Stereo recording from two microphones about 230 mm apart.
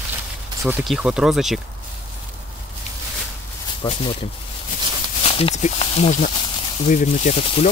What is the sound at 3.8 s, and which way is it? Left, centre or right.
Speech, left.